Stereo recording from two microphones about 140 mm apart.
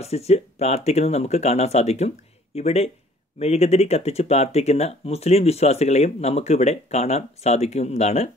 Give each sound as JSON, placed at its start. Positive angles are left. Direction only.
{"t": 0.0, "sound": "speech", "side_deg": 50}